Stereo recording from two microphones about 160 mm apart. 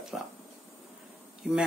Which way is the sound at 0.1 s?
Centre (ahead or behind).